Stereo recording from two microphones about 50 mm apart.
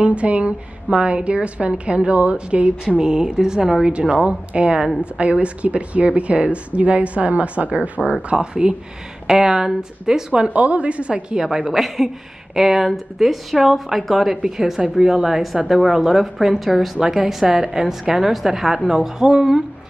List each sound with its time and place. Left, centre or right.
0.0 s a woman's voice: right
4.2 s a woman's voice: right
9.3 s speech: centre
10.5 s a woman's voice: right
11.7 s speech: centre
15.7 s speech: centre